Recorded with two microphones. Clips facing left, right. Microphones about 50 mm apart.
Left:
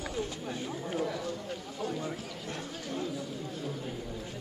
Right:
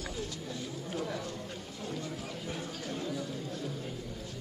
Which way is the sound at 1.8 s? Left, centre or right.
Centre.